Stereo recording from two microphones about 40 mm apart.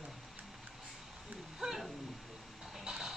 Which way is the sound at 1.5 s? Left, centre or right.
Centre.